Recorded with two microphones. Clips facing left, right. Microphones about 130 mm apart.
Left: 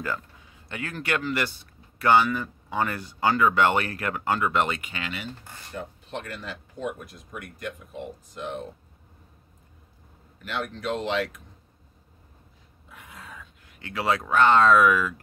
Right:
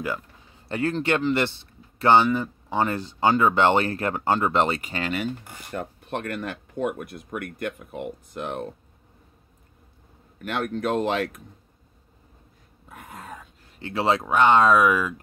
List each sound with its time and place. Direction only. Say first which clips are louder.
0.7 s speech: right 7 dB; 35° right (ahead or behind)
5.7 s speech: right 5 dB; 60° right (ahead or behind)
10.4 s speech: right 5 dB; 50° right (ahead or behind)
12.8 s a sound: right 5 dB; 50° right (ahead or behind); by 15.1 s 20° right (ahead or behind)